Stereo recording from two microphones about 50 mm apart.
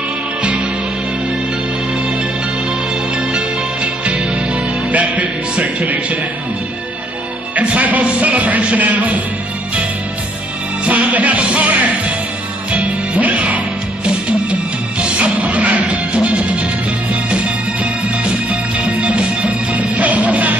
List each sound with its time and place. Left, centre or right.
0.4 s music: right
3.2 s music: right
7.5 s speech: right
10.9 s music: right